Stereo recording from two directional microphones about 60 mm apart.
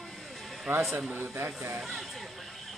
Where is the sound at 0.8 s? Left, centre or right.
Centre.